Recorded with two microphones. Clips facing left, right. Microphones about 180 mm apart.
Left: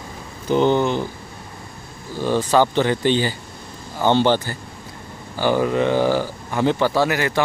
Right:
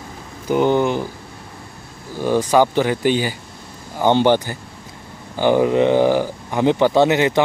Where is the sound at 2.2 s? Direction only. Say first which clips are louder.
Right 2 dB; 15° right (ahead or behind).